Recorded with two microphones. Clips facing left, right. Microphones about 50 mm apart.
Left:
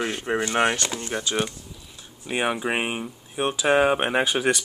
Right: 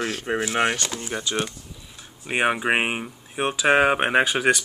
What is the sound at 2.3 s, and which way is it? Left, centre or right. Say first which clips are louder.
Speech: right 3 dB; right.